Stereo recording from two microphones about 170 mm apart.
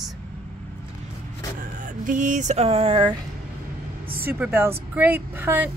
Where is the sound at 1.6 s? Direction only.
50° right (ahead or behind); by 3.2 s 30° right (ahead or behind).